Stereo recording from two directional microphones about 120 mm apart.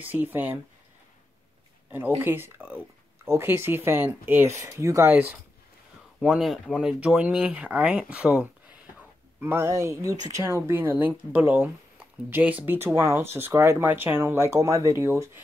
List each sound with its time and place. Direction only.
0.0 s speech: 15° right (ahead or behind)
1.9 s speech: 15° right (ahead or behind)
6.2 s speech: 5° right (ahead or behind)
9.4 s speech: 20° right (ahead or behind)